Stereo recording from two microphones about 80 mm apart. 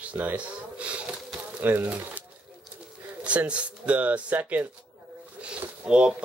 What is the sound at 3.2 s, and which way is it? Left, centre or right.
Speech, centre.